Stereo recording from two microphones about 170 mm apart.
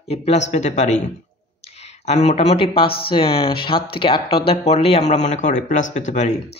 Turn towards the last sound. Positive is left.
turn(degrees=45)  # may be behind; listen again after turning